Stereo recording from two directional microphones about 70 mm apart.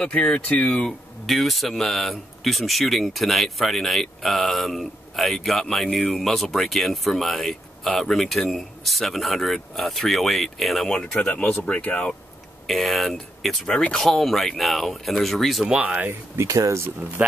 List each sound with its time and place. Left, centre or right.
0.0 s speech: centre
0.8 s speech: centre
5.9 s speech: centre
6.1 s speech: centre
11.6 s speech: left
12.6 s speech: centre
15.6 s speech: centre
16.1 s speech: right
17.2 s speech: right